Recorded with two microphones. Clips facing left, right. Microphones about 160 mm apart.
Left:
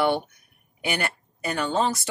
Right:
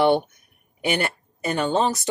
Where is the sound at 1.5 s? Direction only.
20° right (ahead or behind).